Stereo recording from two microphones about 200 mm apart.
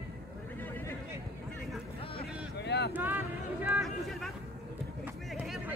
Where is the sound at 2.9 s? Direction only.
10° right (ahead or behind).